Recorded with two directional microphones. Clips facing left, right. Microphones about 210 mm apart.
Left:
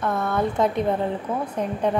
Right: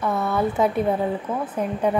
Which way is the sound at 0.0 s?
5° right (ahead or behind).